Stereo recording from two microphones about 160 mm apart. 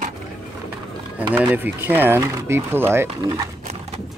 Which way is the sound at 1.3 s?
10° right (ahead or behind).